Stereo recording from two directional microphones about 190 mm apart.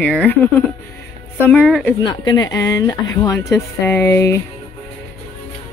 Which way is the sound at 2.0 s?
20° left (ahead or behind).